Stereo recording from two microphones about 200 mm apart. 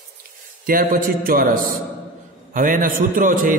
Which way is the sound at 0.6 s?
45° right (ahead or behind).